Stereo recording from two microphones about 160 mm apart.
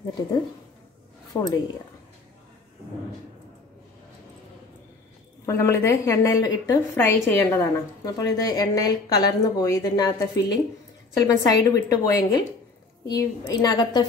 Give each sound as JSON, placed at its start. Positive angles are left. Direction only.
{"t": 1.3, "sound": "a woman's voice", "side_deg": 25}
{"t": 5.4, "sound": "a woman's voice", "side_deg": 15}